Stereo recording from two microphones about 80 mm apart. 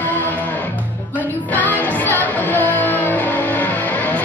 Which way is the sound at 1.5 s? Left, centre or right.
Left.